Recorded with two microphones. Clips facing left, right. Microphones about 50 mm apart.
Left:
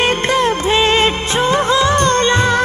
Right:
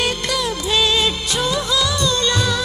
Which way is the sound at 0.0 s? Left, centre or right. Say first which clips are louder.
Left 7 dB; left.